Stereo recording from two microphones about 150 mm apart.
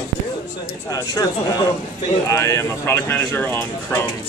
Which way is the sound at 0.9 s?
25° left (ahead or behind).